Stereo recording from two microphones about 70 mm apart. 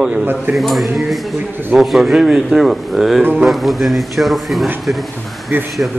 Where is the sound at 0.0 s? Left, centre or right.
Centre.